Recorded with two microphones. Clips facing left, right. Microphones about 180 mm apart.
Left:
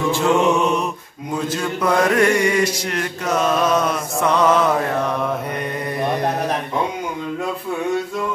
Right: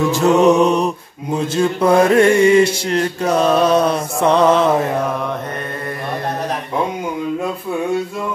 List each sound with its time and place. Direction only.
0.1 s mantra: 40° right (ahead or behind)